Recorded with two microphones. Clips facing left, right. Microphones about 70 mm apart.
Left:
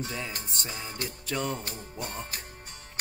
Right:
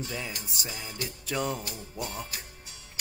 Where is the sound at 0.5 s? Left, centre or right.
Centre.